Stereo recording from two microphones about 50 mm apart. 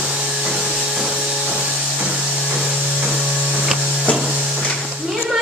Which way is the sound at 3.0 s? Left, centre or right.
Centre.